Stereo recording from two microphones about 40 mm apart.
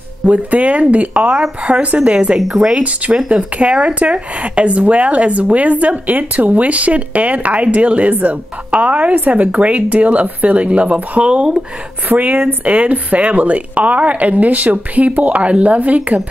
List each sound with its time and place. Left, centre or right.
0.2 s speech: right
2.3 s speech: centre
3.3 s speech: right
12.1 s speech: right